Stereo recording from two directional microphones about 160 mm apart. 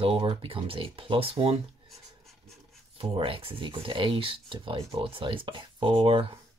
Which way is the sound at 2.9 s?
35° right (ahead or behind).